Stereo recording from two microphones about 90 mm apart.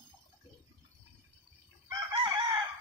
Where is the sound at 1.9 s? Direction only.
45° right (ahead or behind).